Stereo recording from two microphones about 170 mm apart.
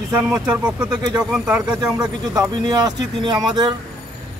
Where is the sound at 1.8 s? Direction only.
25° right (ahead or behind).